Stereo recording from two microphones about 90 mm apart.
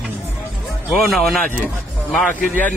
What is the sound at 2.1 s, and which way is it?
Speech, 15° left (ahead or behind).